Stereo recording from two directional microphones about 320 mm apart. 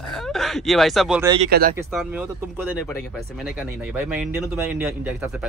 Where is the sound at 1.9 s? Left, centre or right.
Centre.